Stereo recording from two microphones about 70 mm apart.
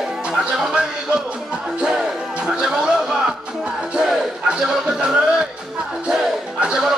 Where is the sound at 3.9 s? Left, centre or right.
Centre.